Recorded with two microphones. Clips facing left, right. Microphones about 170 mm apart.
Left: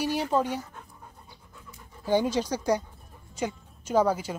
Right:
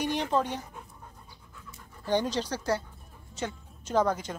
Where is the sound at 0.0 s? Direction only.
10° left (ahead or behind).